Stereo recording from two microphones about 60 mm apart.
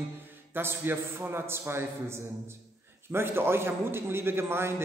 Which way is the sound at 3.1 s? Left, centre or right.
Right.